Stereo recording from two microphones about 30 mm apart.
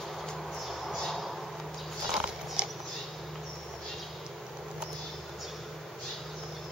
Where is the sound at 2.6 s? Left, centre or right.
Right.